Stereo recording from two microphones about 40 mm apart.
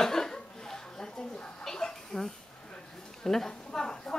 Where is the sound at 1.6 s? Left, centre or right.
Centre.